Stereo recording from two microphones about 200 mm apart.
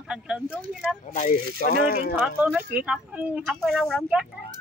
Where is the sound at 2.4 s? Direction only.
5° right (ahead or behind).